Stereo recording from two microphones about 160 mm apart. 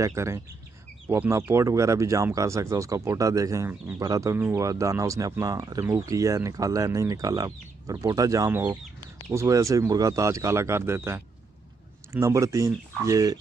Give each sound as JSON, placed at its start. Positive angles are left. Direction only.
{"t": 0.0, "sound": "speech", "side_deg": -15}